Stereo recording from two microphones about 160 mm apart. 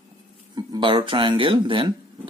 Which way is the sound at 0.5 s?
30° right (ahead or behind).